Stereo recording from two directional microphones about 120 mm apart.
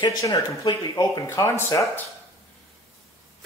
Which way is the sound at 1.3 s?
25° left (ahead or behind).